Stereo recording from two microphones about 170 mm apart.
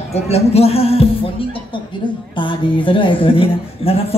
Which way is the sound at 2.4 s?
30° left (ahead or behind).